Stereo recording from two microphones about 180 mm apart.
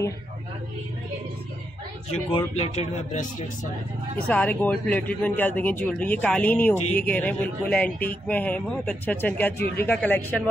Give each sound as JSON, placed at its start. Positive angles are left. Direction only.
{"t": 2.5, "sound": "speech", "side_deg": 35}
{"t": 4.3, "sound": "a man's voice", "side_deg": 10}